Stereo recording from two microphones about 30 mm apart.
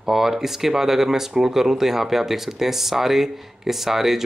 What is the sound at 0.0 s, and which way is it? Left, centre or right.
Speech, centre.